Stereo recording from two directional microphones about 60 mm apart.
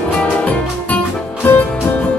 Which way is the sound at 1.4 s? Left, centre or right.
Left.